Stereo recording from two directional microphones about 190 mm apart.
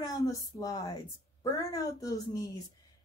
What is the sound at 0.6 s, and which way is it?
Speech, 20° left (ahead or behind).